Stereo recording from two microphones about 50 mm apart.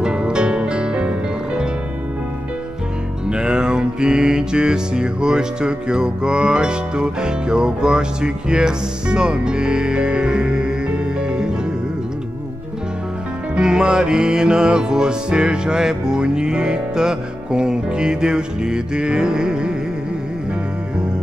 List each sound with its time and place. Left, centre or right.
0.0 s music: centre
3.3 s music: centre
13.6 s music: centre